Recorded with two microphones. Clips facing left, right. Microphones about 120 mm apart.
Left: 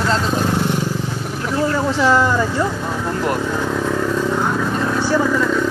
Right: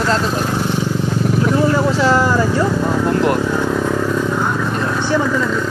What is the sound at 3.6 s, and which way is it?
Motorcycle, 15° right (ahead or behind).